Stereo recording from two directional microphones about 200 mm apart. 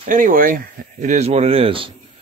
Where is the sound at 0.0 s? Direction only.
40° right (ahead or behind).